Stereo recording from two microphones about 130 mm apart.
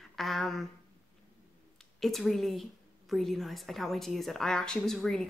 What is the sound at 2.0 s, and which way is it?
A woman's voice, centre (ahead or behind).